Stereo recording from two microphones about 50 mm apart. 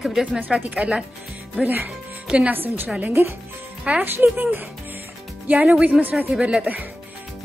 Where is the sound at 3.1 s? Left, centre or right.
Right.